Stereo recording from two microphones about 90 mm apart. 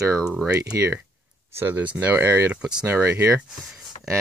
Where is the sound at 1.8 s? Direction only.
15° right (ahead or behind).